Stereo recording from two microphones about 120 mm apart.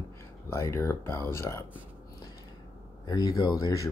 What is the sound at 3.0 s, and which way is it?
Speech, 35° left (ahead or behind).